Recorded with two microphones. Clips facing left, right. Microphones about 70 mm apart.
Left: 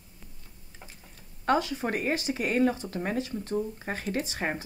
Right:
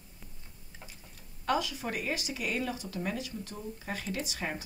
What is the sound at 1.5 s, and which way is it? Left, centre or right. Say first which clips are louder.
Speech: left 5 dB; left.